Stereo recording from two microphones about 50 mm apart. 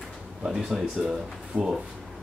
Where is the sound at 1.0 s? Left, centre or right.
Centre.